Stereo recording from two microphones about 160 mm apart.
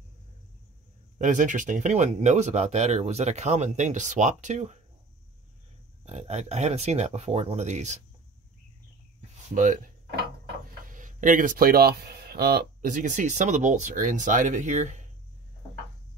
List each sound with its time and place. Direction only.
1.1 s speech: 50° right (ahead or behind)
6.0 s speech: 45° right (ahead or behind)
9.5 s speech: 55° right (ahead or behind)
10.9 s speech: 55° right (ahead or behind)